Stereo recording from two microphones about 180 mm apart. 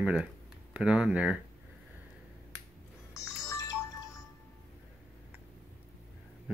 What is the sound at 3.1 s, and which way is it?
Music, 20° left (ahead or behind).